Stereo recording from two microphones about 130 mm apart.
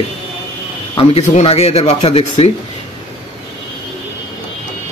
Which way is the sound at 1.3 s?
50° left (ahead or behind).